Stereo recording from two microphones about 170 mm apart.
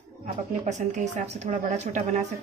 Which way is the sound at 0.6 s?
45° right (ahead or behind).